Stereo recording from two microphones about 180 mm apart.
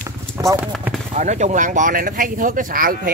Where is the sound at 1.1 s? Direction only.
40° right (ahead or behind).